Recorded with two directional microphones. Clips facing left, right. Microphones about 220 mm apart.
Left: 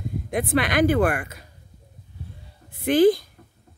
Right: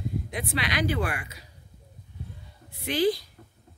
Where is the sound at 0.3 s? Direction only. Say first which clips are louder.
Left 11 dB; 50° left (ahead or behind).